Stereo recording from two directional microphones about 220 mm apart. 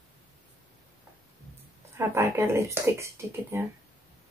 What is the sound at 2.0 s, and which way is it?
Speech, 10° right (ahead or behind).